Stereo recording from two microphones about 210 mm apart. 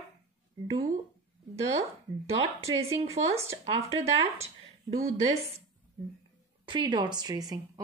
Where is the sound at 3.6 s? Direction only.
25° right (ahead or behind).